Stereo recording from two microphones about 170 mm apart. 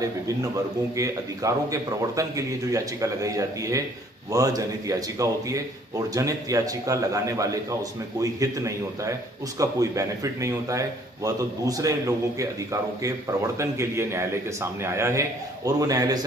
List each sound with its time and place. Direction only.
0.9 s a man's voice: 20° right (ahead or behind)
13.0 s a man's voice: 15° right (ahead or behind)